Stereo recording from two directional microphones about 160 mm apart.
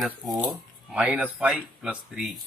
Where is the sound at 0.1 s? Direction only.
5° right (ahead or behind).